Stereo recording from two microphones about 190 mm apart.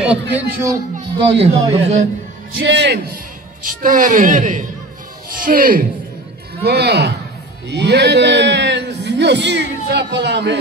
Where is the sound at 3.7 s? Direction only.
45° right (ahead or behind).